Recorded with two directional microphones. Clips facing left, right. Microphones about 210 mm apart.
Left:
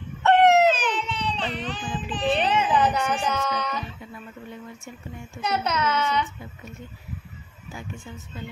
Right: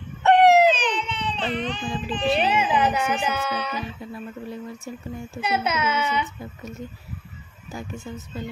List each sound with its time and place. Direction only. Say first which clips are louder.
0.2 s baby cry: right 2 dB; 15° right (ahead or behind)
0.7 s baby cry: right 1 dB; 5° left (ahead or behind)
2.3 s speech: even; 10° right (ahead or behind)
4.1 s a sound: right 6 dB; 35° right (ahead or behind)
5.4 s a child's voice: right 1 dB; 5° right (ahead or behind)
7.7 s speech: right 4 dB; 40° right (ahead or behind)